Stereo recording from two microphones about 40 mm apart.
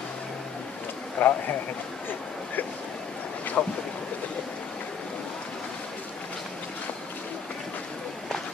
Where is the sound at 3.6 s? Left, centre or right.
Left.